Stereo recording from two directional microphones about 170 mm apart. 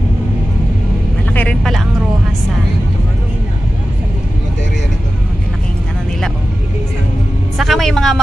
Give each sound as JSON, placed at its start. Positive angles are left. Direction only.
{"t": 1.3, "sound": "vehicle", "side_deg": 5}
{"t": 7.5, "sound": "vehicle", "side_deg": 0}